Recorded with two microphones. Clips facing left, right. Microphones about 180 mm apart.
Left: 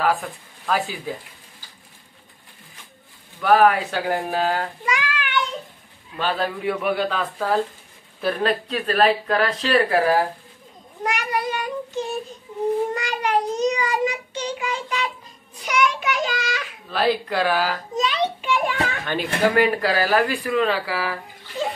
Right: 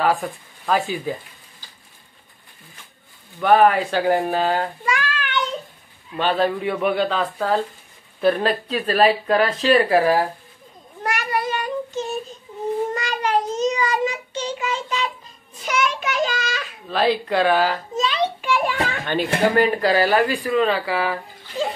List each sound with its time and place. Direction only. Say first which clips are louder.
0.7 s speech: right 3 dB; centre (ahead or behind)
3.4 s speech: right 1 dB; centre (ahead or behind)
4.8 s a sound: right 1 dB; 20° left (ahead or behind)
6.1 s speech: right 4 dB; centre (ahead or behind)
11.1 s child singing: right 1 dB; 15° left (ahead or behind)
16.9 s speech: right 2 dB; 5° left (ahead or behind)
17.9 s a sound: right 1 dB; 15° left (ahead or behind)
19.1 s speech: right 1 dB; 5° left (ahead or behind)